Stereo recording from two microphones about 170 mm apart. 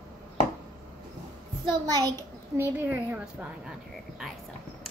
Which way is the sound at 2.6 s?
10° right (ahead or behind).